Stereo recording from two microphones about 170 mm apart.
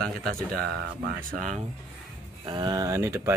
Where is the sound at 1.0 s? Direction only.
45° right (ahead or behind).